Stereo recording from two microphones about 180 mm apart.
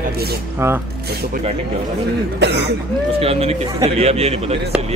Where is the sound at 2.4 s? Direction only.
70° right (ahead or behind).